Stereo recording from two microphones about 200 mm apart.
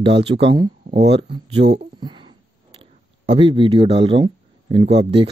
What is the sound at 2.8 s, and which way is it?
Speech, 25° right (ahead or behind).